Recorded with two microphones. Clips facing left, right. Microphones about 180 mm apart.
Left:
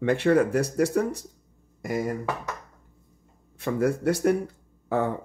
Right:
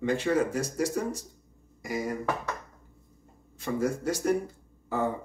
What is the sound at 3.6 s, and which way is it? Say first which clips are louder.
Speech: left 5 dB; 60° left (ahead or behind).